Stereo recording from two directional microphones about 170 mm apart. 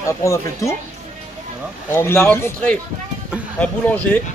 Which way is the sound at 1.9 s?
15° left (ahead or behind).